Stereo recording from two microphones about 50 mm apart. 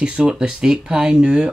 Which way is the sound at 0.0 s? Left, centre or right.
Centre.